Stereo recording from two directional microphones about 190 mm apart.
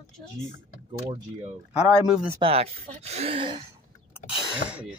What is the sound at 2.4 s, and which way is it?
Speech, 30° right (ahead or behind).